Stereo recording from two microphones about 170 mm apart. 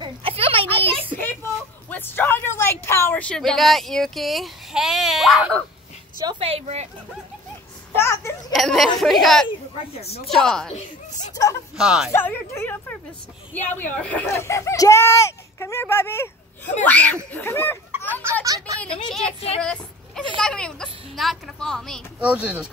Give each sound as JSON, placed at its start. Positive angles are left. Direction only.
{"t": 0.0, "sound": "a sound", "side_deg": -35}
{"t": 1.1, "sound": "a sound", "side_deg": 10}
{"t": 6.1, "sound": "a child's voice", "side_deg": -25}
{"t": 6.5, "sound": "speech", "side_deg": -40}
{"t": 7.9, "sound": "speech", "side_deg": 15}
{"t": 8.5, "sound": "a woman's voice", "side_deg": 0}
{"t": 9.5, "sound": "speech", "side_deg": 35}
{"t": 10.2, "sound": "a woman's voice", "side_deg": 0}
{"t": 11.4, "sound": "speech", "side_deg": 20}
{"t": 11.7, "sound": "a woman's voice", "side_deg": -5}
{"t": 12.1, "sound": "speech", "side_deg": 15}
{"t": 18.2, "sound": "a child's voice", "side_deg": -20}
{"t": 19.6, "sound": "a woman's voice", "side_deg": 5}